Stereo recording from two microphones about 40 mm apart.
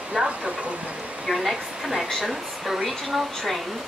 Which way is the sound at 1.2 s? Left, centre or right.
Centre.